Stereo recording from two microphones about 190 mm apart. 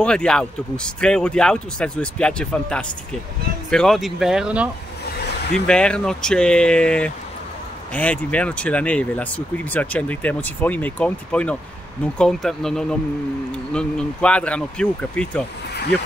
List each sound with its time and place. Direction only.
0.0 s a man's voice: 5° left (ahead or behind)
5.7 s a man's voice: 5° left (ahead or behind)